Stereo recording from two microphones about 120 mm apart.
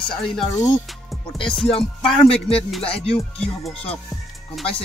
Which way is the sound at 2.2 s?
55° left (ahead or behind).